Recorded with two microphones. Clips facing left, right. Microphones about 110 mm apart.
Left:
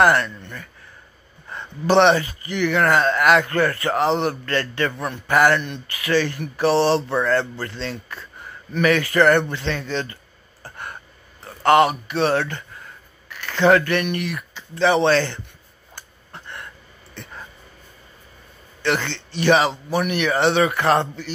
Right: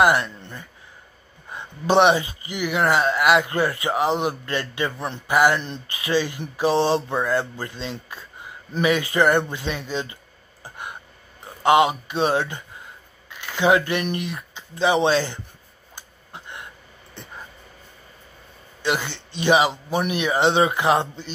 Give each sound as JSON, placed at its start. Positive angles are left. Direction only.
{"t": 0.0, "sound": "speech", "side_deg": -15}
{"t": 0.3, "sound": "speech", "side_deg": -30}
{"t": 1.5, "sound": "speech", "side_deg": -15}
{"t": 5.6, "sound": "speech", "side_deg": -25}
{"t": 10.6, "sound": "a sound", "side_deg": -15}
{"t": 11.4, "sound": "speech", "side_deg": -15}
{"t": 15.9, "sound": "a sound", "side_deg": -15}
{"t": 18.8, "sound": "a man's voice", "side_deg": -15}